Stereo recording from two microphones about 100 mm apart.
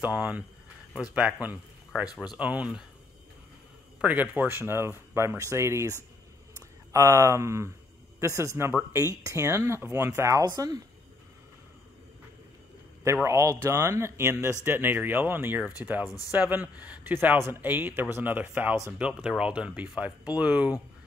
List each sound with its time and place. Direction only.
0.0 s speech: 15° right (ahead or behind)
4.0 s speech: 15° right (ahead or behind)
10.4 s speech: 40° right (ahead or behind)
13.0 s speech: 30° right (ahead or behind)